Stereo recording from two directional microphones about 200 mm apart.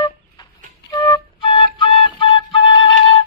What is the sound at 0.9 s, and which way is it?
Flute, 20° left (ahead or behind).